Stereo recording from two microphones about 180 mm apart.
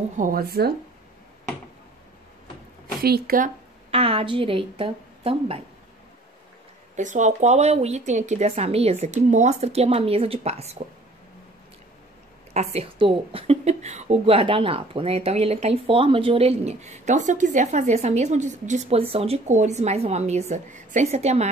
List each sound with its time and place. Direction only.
0.2 s speech: 55° right (ahead or behind)
3.0 s speech: 55° right (ahead or behind)
3.9 s speech: 30° right (ahead or behind)
7.0 s speech: 45° right (ahead or behind)
12.5 s speech: 35° right (ahead or behind)